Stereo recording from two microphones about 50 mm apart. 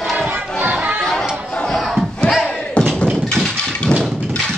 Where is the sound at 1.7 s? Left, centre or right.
Centre.